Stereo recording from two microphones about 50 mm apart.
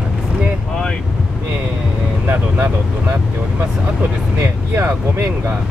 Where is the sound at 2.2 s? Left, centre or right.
Right.